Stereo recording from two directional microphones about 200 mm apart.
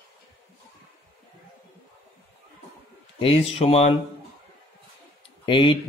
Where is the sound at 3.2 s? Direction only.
25° left (ahead or behind).